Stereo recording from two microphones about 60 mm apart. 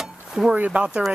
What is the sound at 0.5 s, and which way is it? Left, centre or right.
Speech, right.